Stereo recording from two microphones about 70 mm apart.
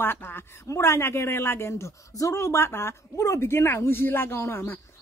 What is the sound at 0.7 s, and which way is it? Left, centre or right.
A woman's voice, left.